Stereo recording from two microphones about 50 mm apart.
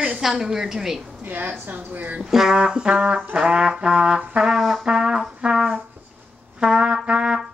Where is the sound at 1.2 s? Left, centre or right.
Right.